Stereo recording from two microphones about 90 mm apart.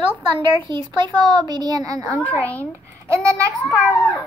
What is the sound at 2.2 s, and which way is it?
Speech, 15° left (ahead or behind).